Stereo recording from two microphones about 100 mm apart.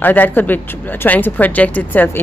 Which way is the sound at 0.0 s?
20° left (ahead or behind).